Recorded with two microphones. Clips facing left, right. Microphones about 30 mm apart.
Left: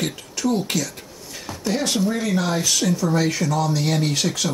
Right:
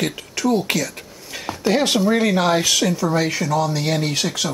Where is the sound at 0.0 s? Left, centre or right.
Centre.